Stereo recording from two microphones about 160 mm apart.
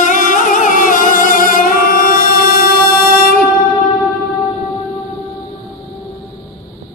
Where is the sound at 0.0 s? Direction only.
55° left (ahead or behind).